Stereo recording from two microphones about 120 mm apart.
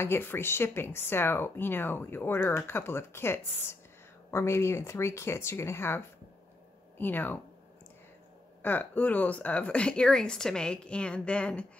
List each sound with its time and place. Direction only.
0.0 s speech: 20° left (ahead or behind)
8.6 s speech: 15° left (ahead or behind)